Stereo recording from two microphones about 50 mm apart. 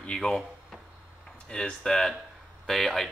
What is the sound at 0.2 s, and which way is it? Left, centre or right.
Speech, centre.